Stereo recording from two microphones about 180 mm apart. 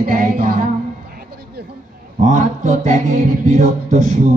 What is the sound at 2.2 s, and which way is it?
Speech, 45° right (ahead or behind).